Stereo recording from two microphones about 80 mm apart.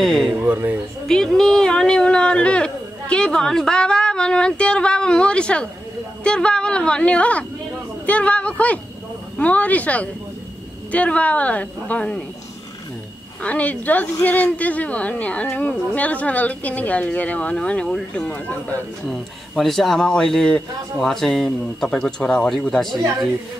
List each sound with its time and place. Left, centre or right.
0.5 s speech: right
1.0 s speech: centre
13.4 s speech: centre
19.0 s speech: centre